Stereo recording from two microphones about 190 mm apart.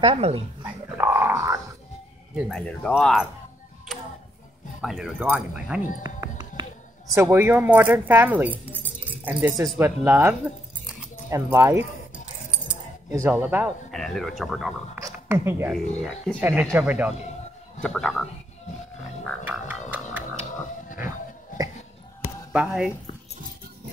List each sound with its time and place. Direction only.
0.0 s speech: 30° right (ahead or behind)
0.9 s a sound: 10° right (ahead or behind)
2.3 s speech: centre (ahead or behind)
4.8 s speech: 5° right (ahead or behind)
6.0 s music: 20° right (ahead or behind)
7.2 s speech: 10° right (ahead or behind)
13.1 s speech: 10° right (ahead or behind)
13.9 s speech: centre (ahead or behind)
15.0 s a sound: 15° right (ahead or behind)
15.7 s speech: centre (ahead or behind)
17.8 s speech: 5° left (ahead or behind)
19.4 s music: 10° right (ahead or behind)
22.5 s speech: 5° right (ahead or behind)